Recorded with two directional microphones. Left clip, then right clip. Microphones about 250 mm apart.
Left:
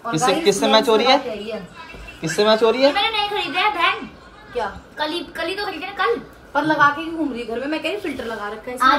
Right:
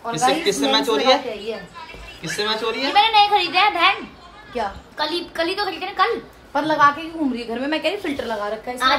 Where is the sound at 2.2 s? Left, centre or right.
Centre.